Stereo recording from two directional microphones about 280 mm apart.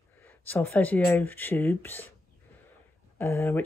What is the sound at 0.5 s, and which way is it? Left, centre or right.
Speech, centre.